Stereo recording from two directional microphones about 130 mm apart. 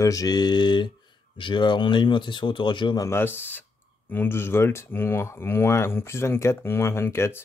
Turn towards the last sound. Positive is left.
turn(degrees=20)  # may be behind; listen again after turning